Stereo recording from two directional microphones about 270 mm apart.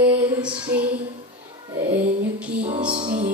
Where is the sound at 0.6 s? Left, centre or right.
Right.